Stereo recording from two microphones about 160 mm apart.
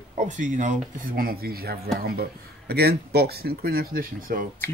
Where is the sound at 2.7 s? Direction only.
85° right; by 4.6 s 60° right (ahead or behind).